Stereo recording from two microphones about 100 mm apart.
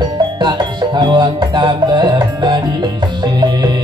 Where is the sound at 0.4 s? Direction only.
50° right (ahead or behind).